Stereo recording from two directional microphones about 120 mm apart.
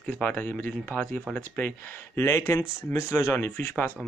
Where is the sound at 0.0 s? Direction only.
15° left (ahead or behind).